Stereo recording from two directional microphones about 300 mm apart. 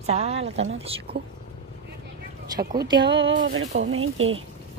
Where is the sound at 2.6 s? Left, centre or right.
Right.